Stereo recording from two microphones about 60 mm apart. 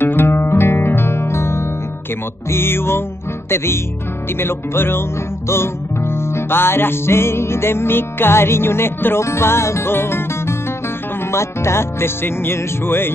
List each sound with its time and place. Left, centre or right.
0.0 s music: left